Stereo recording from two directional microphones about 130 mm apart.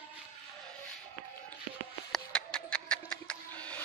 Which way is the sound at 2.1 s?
5° left (ahead or behind).